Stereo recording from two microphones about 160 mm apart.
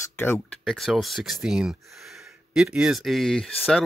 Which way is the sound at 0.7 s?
Centre (ahead or behind).